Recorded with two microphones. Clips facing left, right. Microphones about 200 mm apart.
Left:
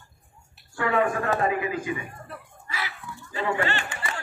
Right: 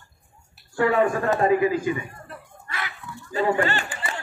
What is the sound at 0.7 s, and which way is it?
Speech, 40° right (ahead or behind).